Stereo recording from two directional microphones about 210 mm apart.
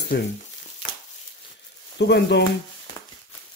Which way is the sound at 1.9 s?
55° left (ahead or behind).